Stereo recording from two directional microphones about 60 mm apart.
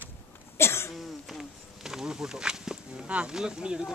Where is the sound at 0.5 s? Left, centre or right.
Left.